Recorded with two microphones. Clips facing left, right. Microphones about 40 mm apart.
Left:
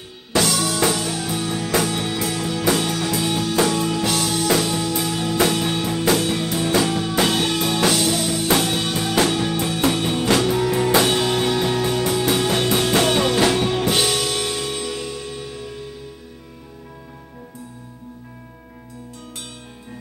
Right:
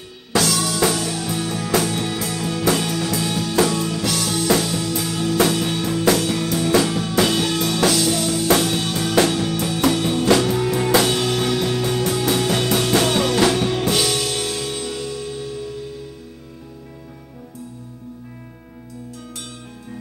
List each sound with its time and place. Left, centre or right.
0.3 s music: left
0.6 s music: centre